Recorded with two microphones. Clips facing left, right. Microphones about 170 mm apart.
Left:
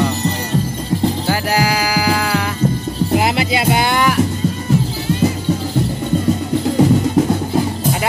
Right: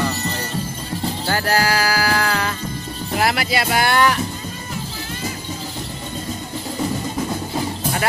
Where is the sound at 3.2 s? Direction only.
20° left (ahead or behind).